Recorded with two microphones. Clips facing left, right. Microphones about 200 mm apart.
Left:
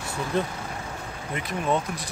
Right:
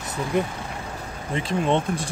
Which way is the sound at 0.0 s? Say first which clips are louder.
Right 2 dB; 20° right (ahead or behind).